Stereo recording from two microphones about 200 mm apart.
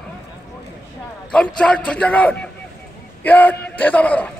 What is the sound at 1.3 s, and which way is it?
A man's voice, 5° left (ahead or behind).